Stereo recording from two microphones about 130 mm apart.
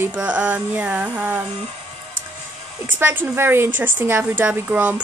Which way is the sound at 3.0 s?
15° right (ahead or behind).